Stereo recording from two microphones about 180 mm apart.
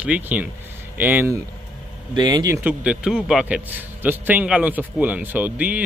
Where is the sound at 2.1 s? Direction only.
25° right (ahead or behind).